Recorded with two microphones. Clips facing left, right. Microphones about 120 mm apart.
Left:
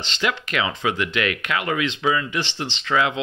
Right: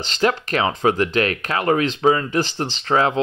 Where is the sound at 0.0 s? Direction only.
40° right (ahead or behind).